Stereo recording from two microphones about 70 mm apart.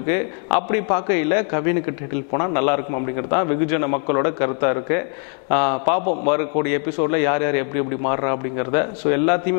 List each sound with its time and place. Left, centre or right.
0.0 s a man's voice: centre